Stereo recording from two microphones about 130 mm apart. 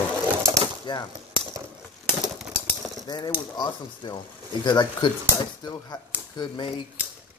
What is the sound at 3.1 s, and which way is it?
Speech, 35° left (ahead or behind).